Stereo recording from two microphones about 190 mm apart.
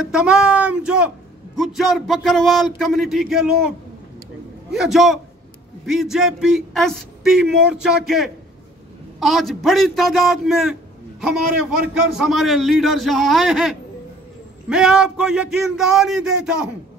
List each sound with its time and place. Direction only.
0.0 s a man's voice: 5° right (ahead or behind)